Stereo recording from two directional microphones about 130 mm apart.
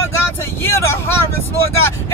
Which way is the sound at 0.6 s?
20° left (ahead or behind).